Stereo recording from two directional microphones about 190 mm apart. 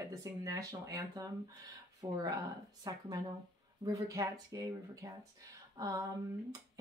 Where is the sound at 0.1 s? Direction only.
15° right (ahead or behind).